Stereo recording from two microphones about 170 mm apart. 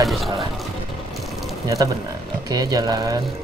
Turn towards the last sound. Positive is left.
turn(degrees=-25)  # may be behind; listen again after turning